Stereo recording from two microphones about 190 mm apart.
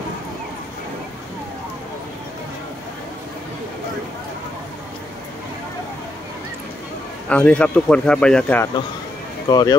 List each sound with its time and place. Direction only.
7.2 s a man's voice: 5° left (ahead or behind)
9.5 s speech: 20° left (ahead or behind)